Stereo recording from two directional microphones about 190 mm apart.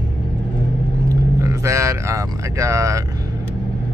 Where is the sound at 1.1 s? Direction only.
15° right (ahead or behind).